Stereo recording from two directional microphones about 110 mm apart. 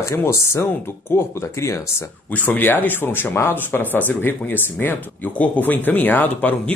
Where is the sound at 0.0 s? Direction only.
25° left (ahead or behind).